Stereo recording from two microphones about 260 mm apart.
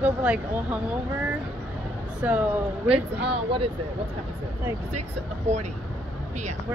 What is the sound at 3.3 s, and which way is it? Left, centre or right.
Speech, right.